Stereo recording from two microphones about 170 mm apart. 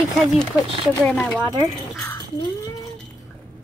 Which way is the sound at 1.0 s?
5° left (ahead or behind).